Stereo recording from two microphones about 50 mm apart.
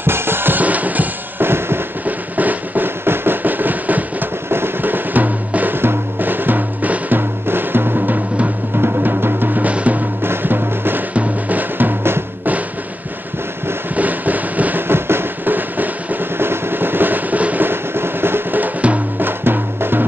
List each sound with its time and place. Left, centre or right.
0.0 s music: right
1.4 s fireworks: right
2.0 s drum: right
3.1 s music: right
4.5 s music: right
5.8 s music: right
10.2 s music: right
13.9 s a sound: right
14.9 s drum: right
16.3 s drum: right
17.6 s a sound: right
19.1 s music: right